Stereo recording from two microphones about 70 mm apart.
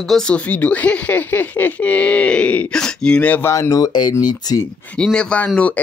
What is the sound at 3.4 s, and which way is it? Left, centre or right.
Speech, left.